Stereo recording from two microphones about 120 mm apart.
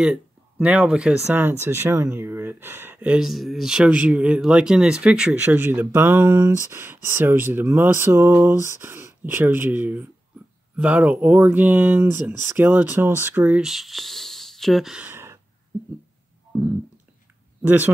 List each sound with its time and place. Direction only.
0.0 s speech: 10° right (ahead or behind)
15.0 s gasp: 20° right (ahead or behind)
17.6 s speech: 15° right (ahead or behind)